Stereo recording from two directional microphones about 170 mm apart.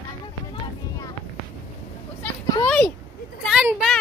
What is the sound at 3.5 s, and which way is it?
Vehicle, 5° right (ahead or behind).